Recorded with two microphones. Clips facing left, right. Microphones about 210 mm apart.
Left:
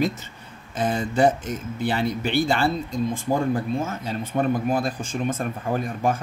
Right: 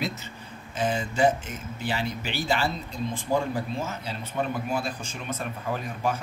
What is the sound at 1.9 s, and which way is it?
Speech, 50° left (ahead or behind).